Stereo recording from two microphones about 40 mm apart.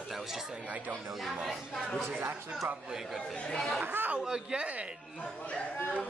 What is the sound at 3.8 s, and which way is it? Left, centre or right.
Speech, right.